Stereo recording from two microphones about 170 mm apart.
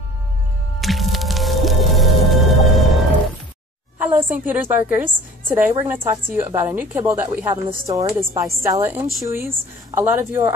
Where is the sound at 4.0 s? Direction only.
10° right (ahead or behind).